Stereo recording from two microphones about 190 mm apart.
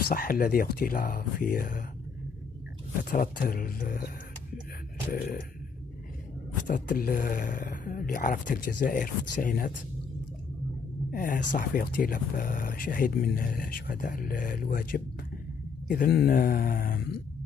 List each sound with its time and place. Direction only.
0.1 s speech: 50° left (ahead or behind)
3.0 s speech: 50° left (ahead or behind)
5.1 s speech: 50° left (ahead or behind)
6.7 s speech: 45° left (ahead or behind)
11.1 s speech: 45° left (ahead or behind)